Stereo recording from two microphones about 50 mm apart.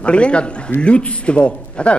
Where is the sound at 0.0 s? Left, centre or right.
Left.